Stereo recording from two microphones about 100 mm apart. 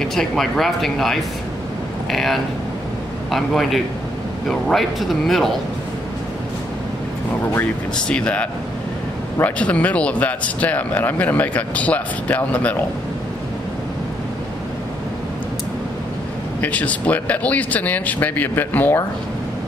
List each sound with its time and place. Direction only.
0.0 s speech: 5° left (ahead or behind)
8.1 s speech: 10° left (ahead or behind)
16.6 s speech: 15° left (ahead or behind)